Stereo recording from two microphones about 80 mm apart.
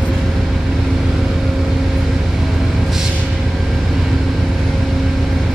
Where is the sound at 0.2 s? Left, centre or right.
Centre.